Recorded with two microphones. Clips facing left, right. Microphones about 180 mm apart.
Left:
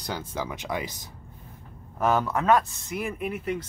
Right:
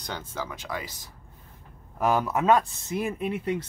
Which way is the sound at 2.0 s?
Centre (ahead or behind).